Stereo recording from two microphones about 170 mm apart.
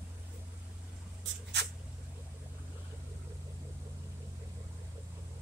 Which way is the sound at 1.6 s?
90° right.